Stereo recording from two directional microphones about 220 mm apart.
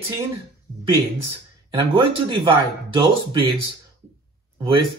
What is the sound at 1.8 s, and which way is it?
Speech, 20° right (ahead or behind).